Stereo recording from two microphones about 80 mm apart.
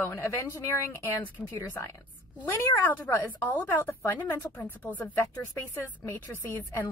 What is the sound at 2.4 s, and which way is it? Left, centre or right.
A woman's voice, left.